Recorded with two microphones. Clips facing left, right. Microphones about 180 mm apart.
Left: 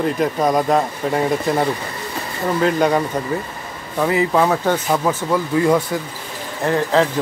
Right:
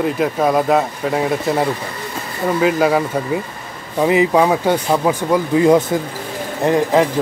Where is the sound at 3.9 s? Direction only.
15° right (ahead or behind).